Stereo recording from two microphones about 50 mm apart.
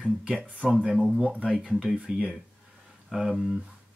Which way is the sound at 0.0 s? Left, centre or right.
Right.